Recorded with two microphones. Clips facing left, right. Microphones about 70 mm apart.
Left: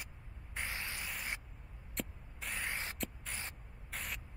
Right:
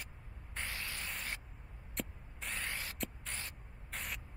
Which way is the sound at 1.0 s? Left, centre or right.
Centre.